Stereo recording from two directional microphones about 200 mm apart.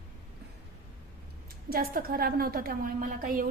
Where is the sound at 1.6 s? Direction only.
45° right (ahead or behind).